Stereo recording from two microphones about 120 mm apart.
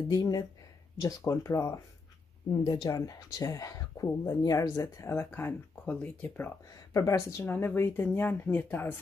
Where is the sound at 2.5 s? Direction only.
35° left (ahead or behind); by 6.5 s 15° left (ahead or behind).